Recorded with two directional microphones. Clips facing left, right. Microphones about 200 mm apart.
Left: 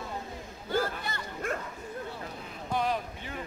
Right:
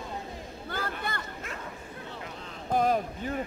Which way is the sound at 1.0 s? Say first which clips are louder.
Right 3 dB; 55° right (ahead or behind).